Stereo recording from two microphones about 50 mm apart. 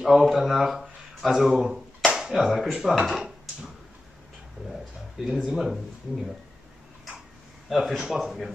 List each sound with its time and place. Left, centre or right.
0.2 s speech: centre
5.2 s speech: centre
7.7 s speech: centre